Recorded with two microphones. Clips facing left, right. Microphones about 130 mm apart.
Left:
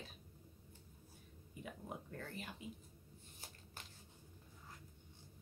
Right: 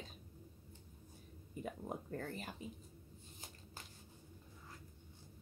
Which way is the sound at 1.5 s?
40° right (ahead or behind).